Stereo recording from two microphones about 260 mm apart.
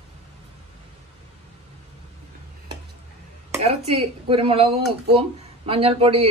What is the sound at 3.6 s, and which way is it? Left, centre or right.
Speech, right.